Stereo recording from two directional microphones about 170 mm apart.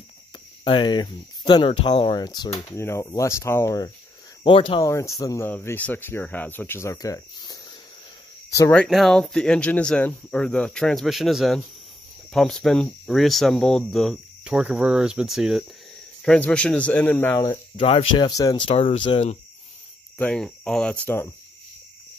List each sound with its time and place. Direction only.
0.7 s speech: 25° left (ahead or behind)
4.4 s speech: 30° left (ahead or behind)
4.8 s speech: 15° left (ahead or behind)
8.7 s speech: centre (ahead or behind)
17.7 s speech: 35° left (ahead or behind)
20.2 s speech: 5° left (ahead or behind)